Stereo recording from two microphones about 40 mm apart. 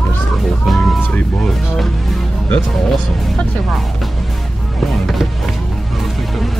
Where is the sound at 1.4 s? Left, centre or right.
Centre.